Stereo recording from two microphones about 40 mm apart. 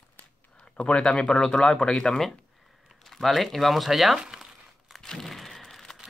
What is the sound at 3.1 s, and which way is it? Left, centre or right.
Speech, centre.